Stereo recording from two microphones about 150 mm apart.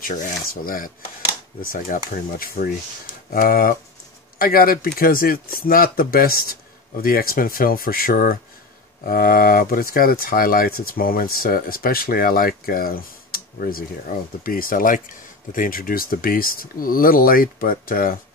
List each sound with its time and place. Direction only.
0.0 s speech: 70° left (ahead or behind)